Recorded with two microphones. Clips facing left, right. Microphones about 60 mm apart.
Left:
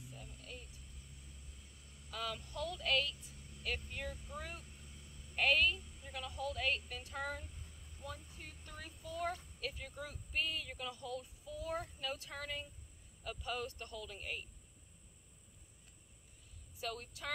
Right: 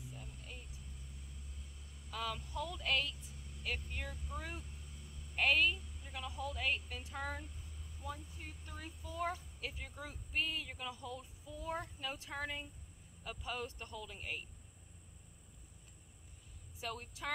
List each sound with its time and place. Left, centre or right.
0.1 s vehicle: centre
2.0 s a sound: centre
3.6 s speech: centre
16.8 s speech: centre